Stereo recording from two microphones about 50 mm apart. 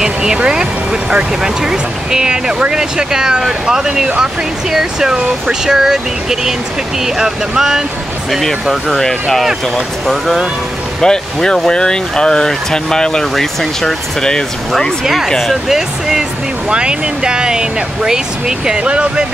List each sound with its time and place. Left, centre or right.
0.0 s speech: centre
7.2 s speech: centre
8.3 s speech: centre
15.7 s speech: centre